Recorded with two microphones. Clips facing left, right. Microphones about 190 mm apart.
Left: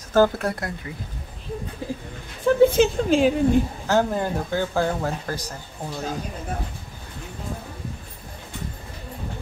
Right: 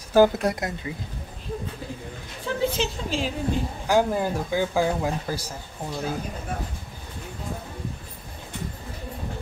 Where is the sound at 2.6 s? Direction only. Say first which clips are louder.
Left 9 dB; 55° left (ahead or behind).